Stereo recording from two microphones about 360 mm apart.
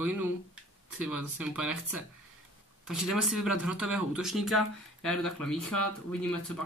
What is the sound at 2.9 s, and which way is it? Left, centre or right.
Speech, left.